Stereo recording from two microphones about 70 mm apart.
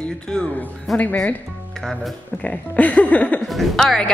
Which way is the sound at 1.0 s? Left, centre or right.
Left.